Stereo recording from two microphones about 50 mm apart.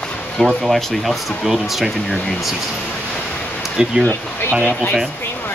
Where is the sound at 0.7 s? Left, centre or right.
Centre.